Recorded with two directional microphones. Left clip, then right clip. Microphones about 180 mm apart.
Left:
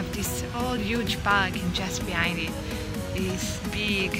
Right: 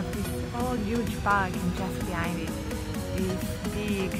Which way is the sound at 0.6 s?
Centre (ahead or behind).